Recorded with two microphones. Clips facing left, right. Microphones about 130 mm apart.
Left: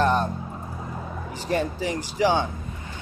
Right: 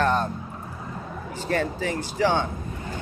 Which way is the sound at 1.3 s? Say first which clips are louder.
Even; 15° left (ahead or behind).